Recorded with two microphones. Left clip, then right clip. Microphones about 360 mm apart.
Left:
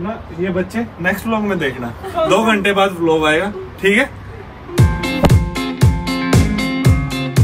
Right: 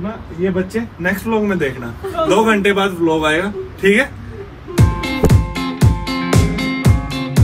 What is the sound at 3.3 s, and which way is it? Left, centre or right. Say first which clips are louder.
Speech: left 1 dB; centre.